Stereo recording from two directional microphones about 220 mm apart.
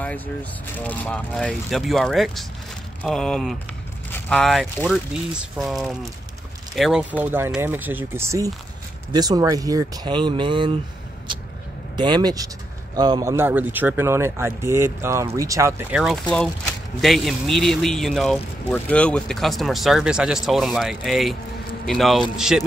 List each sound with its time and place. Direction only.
0.0 s speech: 5° left (ahead or behind); by 10.8 s 20° right (ahead or behind)
12.0 s speech: 20° right (ahead or behind); by 22.2 s centre (ahead or behind)